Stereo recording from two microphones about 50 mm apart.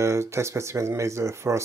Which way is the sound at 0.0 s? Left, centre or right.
Right.